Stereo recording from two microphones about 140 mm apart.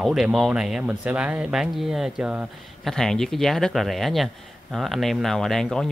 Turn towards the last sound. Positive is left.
turn(degrees=5)  # may be behind; listen again after turning